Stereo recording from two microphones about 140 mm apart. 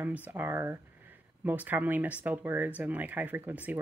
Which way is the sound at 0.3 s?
15° right (ahead or behind).